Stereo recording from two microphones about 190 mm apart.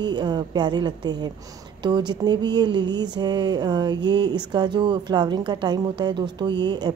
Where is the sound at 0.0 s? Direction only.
25° right (ahead or behind).